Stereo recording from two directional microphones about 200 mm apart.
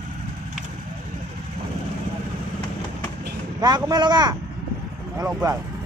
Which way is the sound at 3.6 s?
20° right (ahead or behind).